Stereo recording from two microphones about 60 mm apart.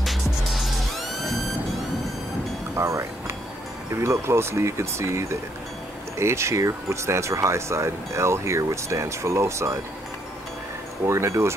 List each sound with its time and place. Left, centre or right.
0.0 s music: centre
2.7 s music: right
3.9 s speech: right
11.1 s speech: right